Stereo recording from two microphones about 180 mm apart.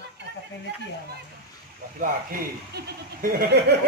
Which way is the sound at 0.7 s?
70° right (ahead or behind).